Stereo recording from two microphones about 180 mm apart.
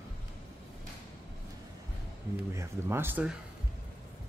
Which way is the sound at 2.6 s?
15° right (ahead or behind).